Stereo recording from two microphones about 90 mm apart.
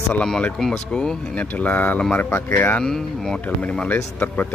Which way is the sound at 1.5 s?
20° left (ahead or behind).